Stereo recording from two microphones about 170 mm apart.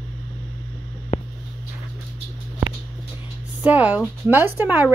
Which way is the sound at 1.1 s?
45° left (ahead or behind).